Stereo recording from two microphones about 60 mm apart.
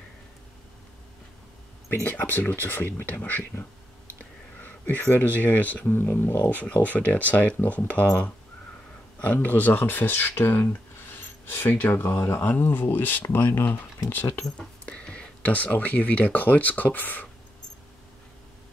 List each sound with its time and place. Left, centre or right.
2.0 s speech: left
14.9 s a sound: centre
15.4 s speech: left